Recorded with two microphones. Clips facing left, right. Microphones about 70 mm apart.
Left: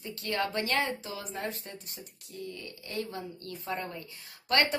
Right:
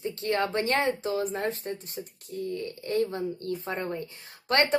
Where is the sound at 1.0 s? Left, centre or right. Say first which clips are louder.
Right 9 dB; right.